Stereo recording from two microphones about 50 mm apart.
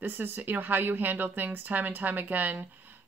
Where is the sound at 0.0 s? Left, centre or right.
Right.